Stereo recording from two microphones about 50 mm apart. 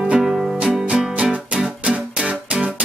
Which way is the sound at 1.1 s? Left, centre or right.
Right.